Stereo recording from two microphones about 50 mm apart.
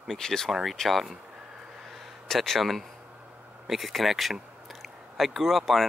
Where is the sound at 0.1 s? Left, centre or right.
Centre.